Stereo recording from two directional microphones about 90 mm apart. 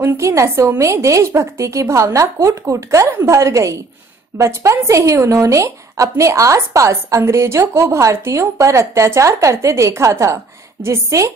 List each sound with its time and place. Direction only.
0.0 s speech: 35° right (ahead or behind)